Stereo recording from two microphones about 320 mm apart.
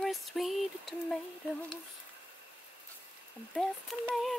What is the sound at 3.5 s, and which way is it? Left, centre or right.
Lullaby, centre.